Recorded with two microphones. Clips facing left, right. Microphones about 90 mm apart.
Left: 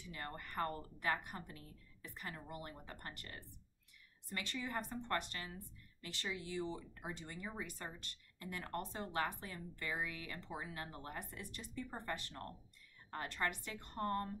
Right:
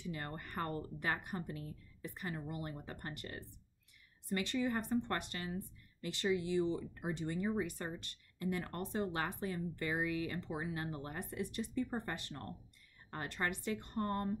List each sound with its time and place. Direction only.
0.0 s a woman's voice: 25° right (ahead or behind)